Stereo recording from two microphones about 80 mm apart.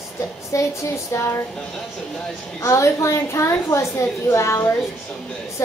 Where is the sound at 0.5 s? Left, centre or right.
Left.